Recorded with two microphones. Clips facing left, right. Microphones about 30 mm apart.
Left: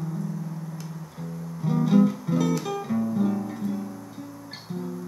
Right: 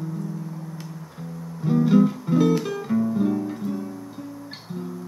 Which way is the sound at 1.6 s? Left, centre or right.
Centre.